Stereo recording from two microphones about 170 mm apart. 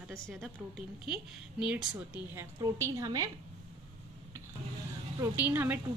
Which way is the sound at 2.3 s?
20° right (ahead or behind).